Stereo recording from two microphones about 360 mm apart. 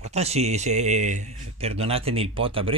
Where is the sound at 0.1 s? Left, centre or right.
Centre.